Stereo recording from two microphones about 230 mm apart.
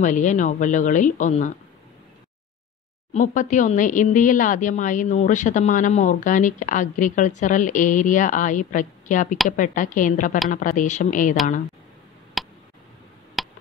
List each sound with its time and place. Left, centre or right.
0.0 s speech: left
3.1 s speech: left
12.4 s tick: centre
13.4 s a sound: centre